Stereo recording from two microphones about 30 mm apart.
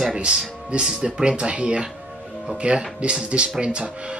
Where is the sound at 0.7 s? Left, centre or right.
Right.